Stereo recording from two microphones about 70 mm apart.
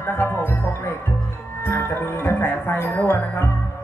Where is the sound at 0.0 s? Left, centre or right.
Left.